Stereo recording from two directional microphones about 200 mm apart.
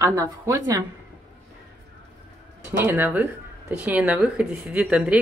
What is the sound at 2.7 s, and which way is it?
Speech, 10° right (ahead or behind).